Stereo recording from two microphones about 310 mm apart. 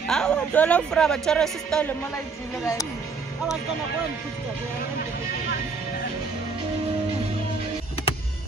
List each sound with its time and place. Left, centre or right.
0.1 s a man's voice: centre